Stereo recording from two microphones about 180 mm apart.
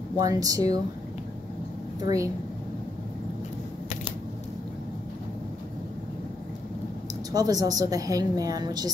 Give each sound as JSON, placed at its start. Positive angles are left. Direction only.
{"t": 0.2, "sound": "a woman's voice", "side_deg": -20}
{"t": 2.0, "sound": "speech", "side_deg": -20}
{"t": 7.3, "sound": "a woman's voice", "side_deg": -20}